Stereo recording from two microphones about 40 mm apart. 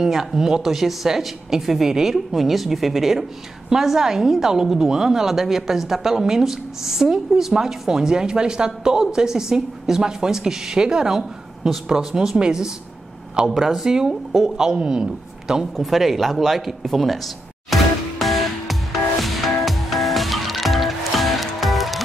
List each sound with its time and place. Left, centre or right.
0.0 s a woman's voice: centre
11.1 s a woman's voice: centre
15.7 s speech: centre
18.2 s music: centre